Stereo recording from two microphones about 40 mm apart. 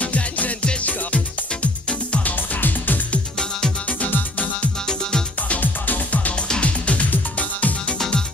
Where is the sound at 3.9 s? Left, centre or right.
Left.